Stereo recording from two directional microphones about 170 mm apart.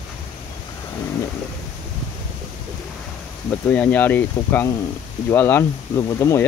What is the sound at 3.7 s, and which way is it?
Speech, 10° left (ahead or behind).